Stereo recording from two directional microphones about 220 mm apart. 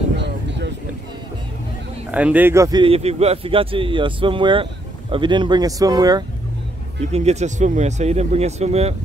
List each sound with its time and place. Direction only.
0.1 s vehicle: 50° right (ahead or behind)
2.0 s speech: 5° right (ahead or behind)
7.0 s speech: 30° right (ahead or behind)